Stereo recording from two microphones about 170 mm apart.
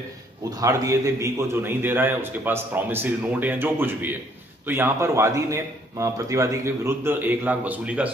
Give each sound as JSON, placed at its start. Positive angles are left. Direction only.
{"t": 0.5, "sound": "a man's voice", "side_deg": -20}